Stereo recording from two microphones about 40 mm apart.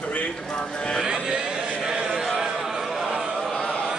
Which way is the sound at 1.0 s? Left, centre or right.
Right.